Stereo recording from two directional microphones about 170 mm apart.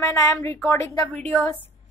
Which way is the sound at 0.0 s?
20° left (ahead or behind).